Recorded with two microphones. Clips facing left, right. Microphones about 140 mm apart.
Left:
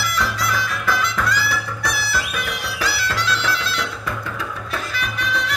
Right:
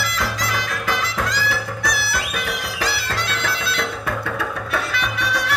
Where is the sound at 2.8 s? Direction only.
50° right (ahead or behind).